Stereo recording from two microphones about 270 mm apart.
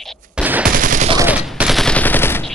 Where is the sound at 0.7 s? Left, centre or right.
Right.